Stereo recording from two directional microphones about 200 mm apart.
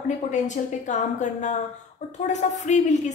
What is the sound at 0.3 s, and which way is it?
A woman's voice, 35° left (ahead or behind).